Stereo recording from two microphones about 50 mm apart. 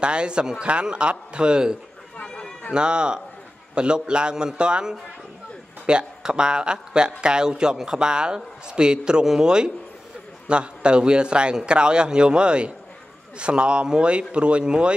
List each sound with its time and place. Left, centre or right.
0.0 s a man's voice: centre
2.2 s run: centre
2.7 s a man's voice: centre